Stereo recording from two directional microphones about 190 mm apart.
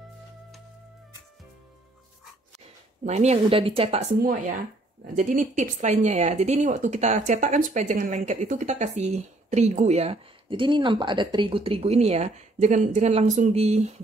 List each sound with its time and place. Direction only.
3.1 s speech: 35° right (ahead or behind)
4.2 s speech: 45° right (ahead or behind)